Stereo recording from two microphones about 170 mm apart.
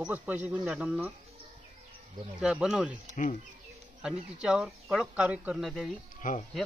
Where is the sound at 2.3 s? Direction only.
5° right (ahead or behind).